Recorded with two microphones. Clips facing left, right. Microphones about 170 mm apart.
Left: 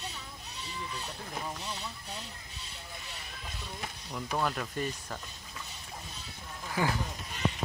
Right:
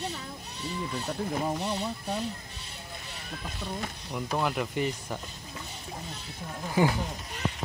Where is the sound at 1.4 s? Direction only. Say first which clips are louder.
Right 9 dB; 60° right (ahead or behind).